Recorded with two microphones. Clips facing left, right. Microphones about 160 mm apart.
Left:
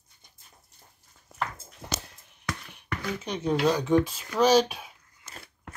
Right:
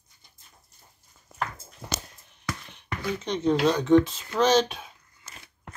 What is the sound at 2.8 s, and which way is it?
Speech, 5° left (ahead or behind).